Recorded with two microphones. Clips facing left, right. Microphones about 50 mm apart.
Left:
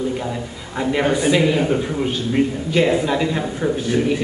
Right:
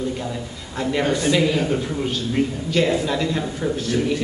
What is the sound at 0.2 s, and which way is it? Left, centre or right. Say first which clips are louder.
A man's voice: left 3 dB; centre.